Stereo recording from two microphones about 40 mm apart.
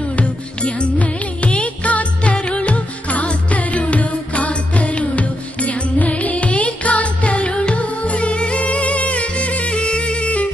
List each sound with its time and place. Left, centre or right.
0.1 s music: left